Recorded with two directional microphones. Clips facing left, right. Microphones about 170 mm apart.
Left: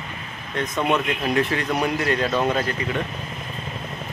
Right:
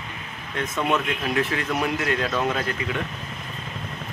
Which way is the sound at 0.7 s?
15° left (ahead or behind).